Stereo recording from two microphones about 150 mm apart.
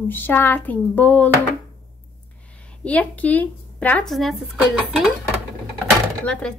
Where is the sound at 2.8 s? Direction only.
10° left (ahead or behind).